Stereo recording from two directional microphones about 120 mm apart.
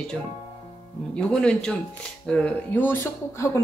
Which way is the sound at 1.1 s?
5° left (ahead or behind).